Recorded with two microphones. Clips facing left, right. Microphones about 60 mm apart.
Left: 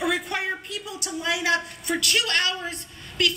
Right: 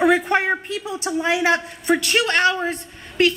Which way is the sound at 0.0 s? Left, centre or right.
Right.